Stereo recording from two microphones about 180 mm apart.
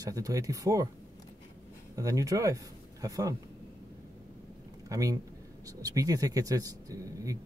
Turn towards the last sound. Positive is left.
turn(degrees=-20)  # may be behind; listen again after turning